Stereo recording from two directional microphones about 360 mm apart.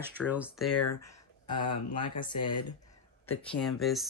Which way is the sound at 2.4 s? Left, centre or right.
Left.